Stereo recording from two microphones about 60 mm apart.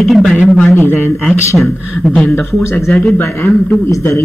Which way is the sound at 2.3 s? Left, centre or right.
Left.